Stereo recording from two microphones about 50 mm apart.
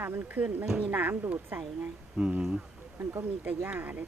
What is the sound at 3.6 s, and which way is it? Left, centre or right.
Speech, right.